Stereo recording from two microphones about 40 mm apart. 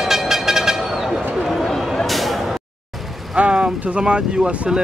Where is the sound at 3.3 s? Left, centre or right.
Right.